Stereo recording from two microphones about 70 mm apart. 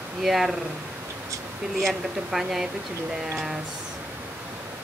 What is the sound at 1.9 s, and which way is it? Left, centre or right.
Speech, centre.